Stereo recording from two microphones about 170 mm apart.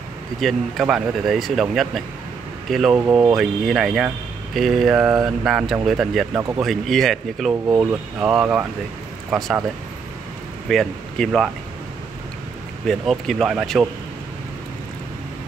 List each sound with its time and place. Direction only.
0.4 s speech: centre (ahead or behind)
3.1 s speech: 20° right (ahead or behind)
3.3 s speech: centre (ahead or behind)
7.6 s speech: 15° right (ahead or behind)
8.2 s speech: 5° right (ahead or behind)
10.7 s speech: centre (ahead or behind)
12.8 s speech: centre (ahead or behind)